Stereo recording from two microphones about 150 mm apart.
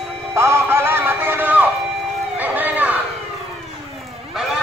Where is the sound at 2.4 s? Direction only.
10° right (ahead or behind).